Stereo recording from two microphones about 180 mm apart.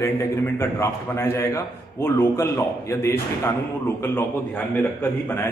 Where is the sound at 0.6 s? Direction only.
15° left (ahead or behind).